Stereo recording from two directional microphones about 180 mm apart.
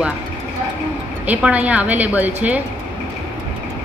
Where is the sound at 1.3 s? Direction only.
10° right (ahead or behind).